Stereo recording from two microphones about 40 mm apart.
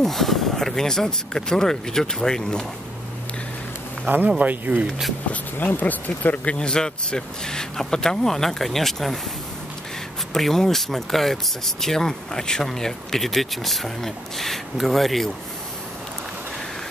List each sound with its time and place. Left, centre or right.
0.0 s speech: centre
4.1 s speech: right
4.4 s speech: right
5.6 s speech: left
6.5 s speech: left
10.3 s speech: centre